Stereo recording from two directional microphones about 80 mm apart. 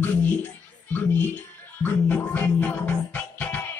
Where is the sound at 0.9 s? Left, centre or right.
Left.